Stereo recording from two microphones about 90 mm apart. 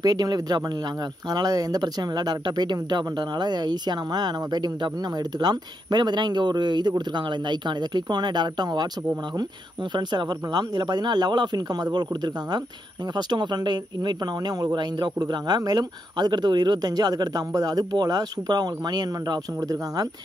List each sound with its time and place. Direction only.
0.0 s speech: 45° right (ahead or behind)
9.9 s speech: 55° right (ahead or behind)